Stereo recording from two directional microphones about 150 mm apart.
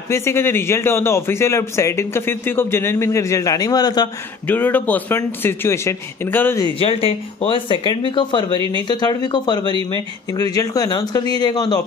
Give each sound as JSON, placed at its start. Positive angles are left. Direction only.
{"t": 0.1, "sound": "a man's voice", "side_deg": 15}
{"t": 4.5, "sound": "a man's voice", "side_deg": 10}
{"t": 6.6, "sound": "speech", "side_deg": 40}